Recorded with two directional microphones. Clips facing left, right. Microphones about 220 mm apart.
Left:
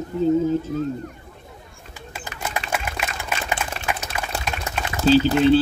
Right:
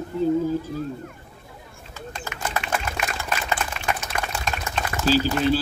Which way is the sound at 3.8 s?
35° left (ahead or behind).